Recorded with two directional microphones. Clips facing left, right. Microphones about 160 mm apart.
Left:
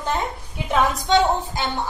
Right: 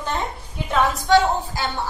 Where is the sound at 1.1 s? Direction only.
20° left (ahead or behind).